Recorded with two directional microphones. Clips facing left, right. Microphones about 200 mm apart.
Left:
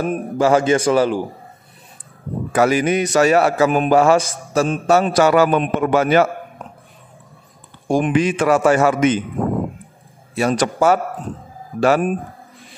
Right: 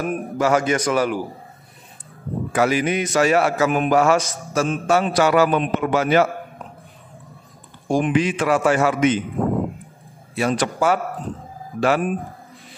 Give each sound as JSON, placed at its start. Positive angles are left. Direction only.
{"t": 0.0, "sound": "a man's voice", "side_deg": 30}
{"t": 2.5, "sound": "a man's voice", "side_deg": 45}
{"t": 7.9, "sound": "a man's voice", "side_deg": 50}
{"t": 10.3, "sound": "a man's voice", "side_deg": 40}